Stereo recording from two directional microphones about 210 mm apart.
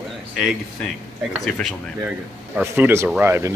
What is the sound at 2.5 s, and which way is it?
Speech, 10° right (ahead or behind).